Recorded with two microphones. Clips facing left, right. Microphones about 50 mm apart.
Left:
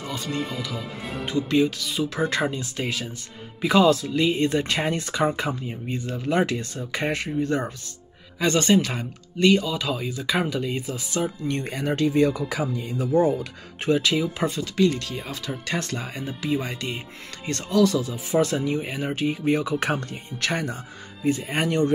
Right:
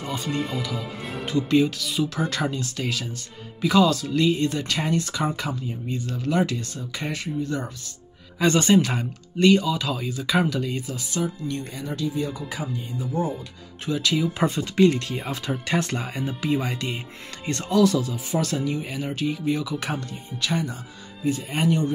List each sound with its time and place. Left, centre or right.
0.0 s speech: centre
2.0 s speech: left
8.4 s speech: centre
11.4 s speech: left
14.6 s speech: right
15.1 s speech: centre; by 21.9 s left